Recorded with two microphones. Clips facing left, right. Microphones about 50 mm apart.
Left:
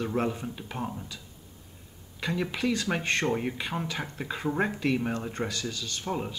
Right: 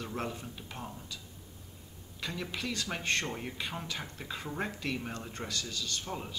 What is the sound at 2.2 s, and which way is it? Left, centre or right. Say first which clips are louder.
Speech: left 8 dB; centre.